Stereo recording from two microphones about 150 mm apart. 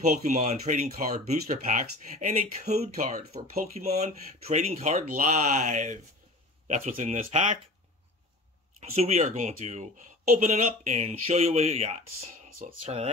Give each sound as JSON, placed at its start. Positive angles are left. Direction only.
{"t": 0.0, "sound": "speech", "side_deg": -50}
{"t": 8.9, "sound": "speech", "side_deg": -45}